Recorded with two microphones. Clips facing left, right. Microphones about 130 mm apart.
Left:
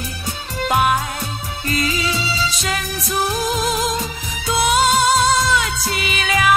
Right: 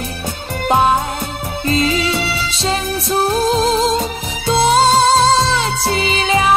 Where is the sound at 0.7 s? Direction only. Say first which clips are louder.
Right 4 dB; 30° right (ahead or behind).